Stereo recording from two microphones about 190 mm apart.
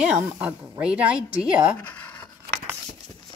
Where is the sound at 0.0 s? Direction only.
5° right (ahead or behind).